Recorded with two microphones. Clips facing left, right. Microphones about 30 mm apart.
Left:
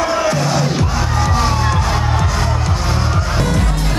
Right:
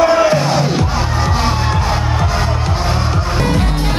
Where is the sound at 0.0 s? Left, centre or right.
Centre.